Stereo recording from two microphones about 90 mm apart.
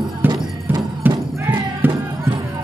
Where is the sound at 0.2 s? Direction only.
20° right (ahead or behind).